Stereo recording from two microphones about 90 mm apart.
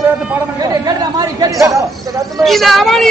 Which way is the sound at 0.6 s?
45° right (ahead or behind).